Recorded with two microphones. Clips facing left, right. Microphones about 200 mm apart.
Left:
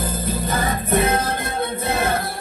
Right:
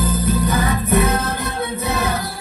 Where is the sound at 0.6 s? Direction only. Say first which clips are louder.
Right 2 dB; 25° left (ahead or behind).